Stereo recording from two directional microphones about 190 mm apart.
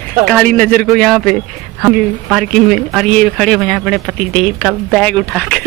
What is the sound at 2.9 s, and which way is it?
Speech, centre (ahead or behind).